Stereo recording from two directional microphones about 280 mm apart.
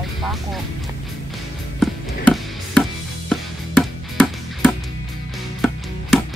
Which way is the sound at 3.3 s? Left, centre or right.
Centre.